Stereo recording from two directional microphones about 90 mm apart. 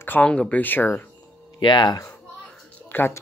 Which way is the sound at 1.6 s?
55° left (ahead or behind).